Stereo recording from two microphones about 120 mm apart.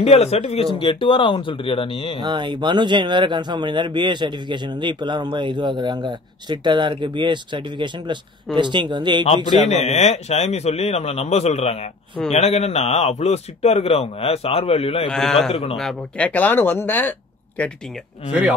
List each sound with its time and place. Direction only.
0.0 s speech: 65° left (ahead or behind); by 2.1 s 45° left (ahead or behind)
2.2 s speech: 40° right (ahead or behind)
9.6 s a man's voice: 65° left (ahead or behind)
15.0 s a man's voice: centre (ahead or behind)